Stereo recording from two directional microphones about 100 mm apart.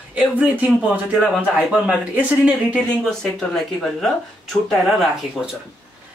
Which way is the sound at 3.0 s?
5° left (ahead or behind).